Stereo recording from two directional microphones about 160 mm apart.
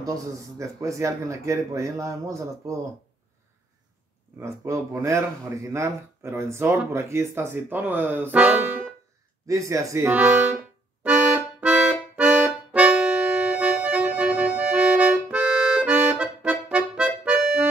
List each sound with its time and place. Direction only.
0.6 s speech: 20° right (ahead or behind)
4.4 s speech: 20° right (ahead or behind)
9.5 s speech: 20° right (ahead or behind)
11.0 s music: 5° right (ahead or behind)